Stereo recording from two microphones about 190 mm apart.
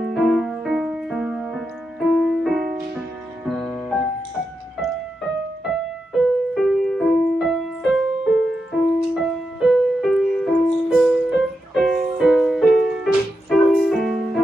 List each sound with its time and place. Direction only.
0.1 s music: centre (ahead or behind)